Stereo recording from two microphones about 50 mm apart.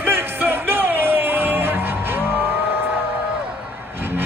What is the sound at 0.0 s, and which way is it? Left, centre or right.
Music, right.